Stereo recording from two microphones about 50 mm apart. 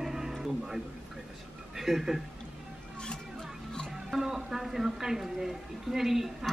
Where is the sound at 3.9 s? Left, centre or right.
Centre.